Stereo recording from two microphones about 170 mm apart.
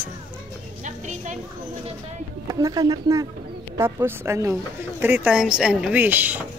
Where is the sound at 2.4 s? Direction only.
20° right (ahead or behind).